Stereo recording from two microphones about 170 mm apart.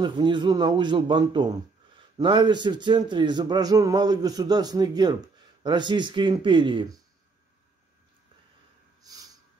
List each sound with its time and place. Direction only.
0.0 s a man's voice: 25° right (ahead or behind)
9.0 s snort: 20° right (ahead or behind)